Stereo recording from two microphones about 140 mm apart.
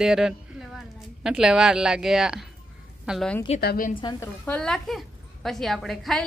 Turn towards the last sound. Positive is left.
turn(degrees=0)  # may be behind; listen again after turning